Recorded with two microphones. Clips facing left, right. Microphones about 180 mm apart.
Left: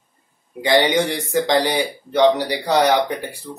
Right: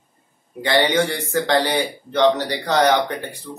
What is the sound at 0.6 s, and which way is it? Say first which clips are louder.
Speech: left 1 dB; 15° left (ahead or behind).